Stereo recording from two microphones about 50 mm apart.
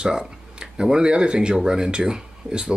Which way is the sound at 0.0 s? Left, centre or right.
Centre.